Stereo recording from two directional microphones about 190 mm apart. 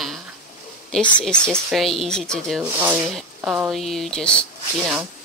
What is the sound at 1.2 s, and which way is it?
Speech, 5° left (ahead or behind).